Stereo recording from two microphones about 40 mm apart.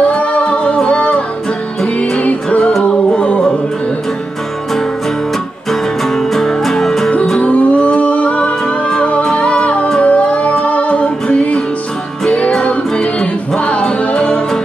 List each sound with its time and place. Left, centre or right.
0.1 s music: left
5.7 s music: centre
7.3 s music: left